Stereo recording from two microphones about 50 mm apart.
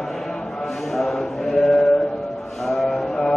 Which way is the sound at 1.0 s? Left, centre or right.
Centre.